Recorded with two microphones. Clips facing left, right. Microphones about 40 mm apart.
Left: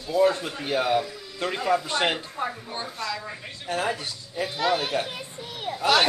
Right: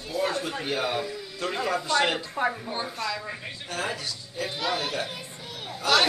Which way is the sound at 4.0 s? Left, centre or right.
Left.